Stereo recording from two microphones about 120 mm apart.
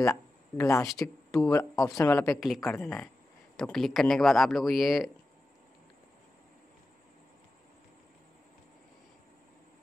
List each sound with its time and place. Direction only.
0.0 s speech: 25° left (ahead or behind)
2.4 s a man's voice: centre (ahead or behind)